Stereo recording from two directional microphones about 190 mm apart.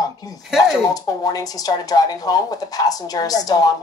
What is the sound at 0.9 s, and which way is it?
Speech, 20° left (ahead or behind).